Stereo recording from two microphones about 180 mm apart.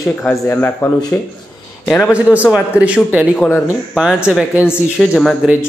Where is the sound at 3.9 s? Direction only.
Centre (ahead or behind).